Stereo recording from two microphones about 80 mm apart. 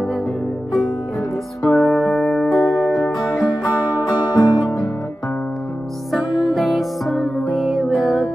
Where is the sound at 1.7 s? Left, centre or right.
Centre.